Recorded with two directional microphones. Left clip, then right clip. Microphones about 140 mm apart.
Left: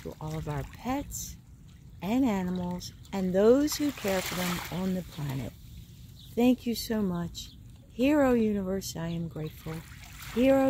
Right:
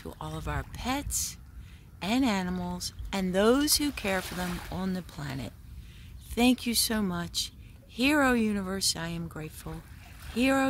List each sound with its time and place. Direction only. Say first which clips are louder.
0.0 s a woman's voice: even; 40° right (ahead or behind)
2.5 s speech: even; 45° right (ahead or behind)
2.8 s a woman's voice: right 2 dB; 30° right (ahead or behind)
4.3 s speech: left 3 dB; 15° left (ahead or behind)
5.2 s a woman's voice: even; 20° right (ahead or behind)
9.7 s boat: left 2 dB; 15° left (ahead or behind)
10.4 s a woman's voice: left 3 dB; 25° right (ahead or behind)